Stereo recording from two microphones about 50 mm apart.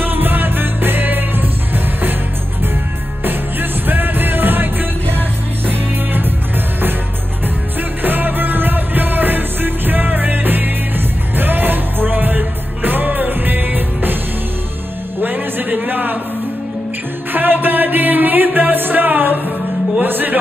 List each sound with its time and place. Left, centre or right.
0.0 s music: right
3.3 s music: right
8.0 s music: right
15.2 s a sound: right
17.3 s music: right